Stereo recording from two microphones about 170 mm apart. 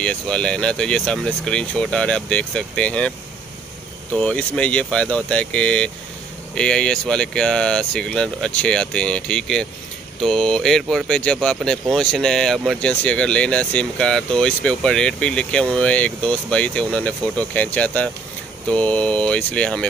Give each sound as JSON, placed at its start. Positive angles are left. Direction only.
{"t": 0.0, "sound": "speech", "side_deg": 5}
{"t": 4.2, "sound": "speech", "side_deg": 5}